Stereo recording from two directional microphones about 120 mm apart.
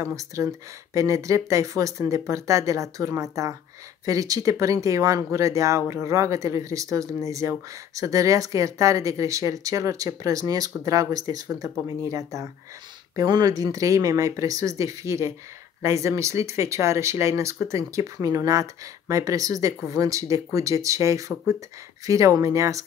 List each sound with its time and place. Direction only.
0.0 s speech: 25° right (ahead or behind)